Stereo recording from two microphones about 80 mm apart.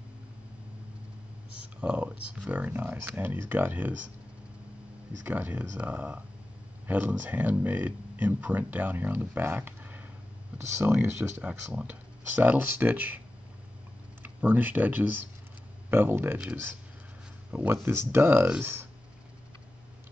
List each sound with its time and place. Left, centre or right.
1.8 s speech: centre
5.2 s speech: right
14.2 s speech: right
17.5 s speech: centre
17.8 s speech: right